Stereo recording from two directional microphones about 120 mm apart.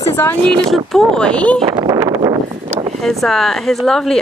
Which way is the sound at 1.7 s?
35° right (ahead or behind).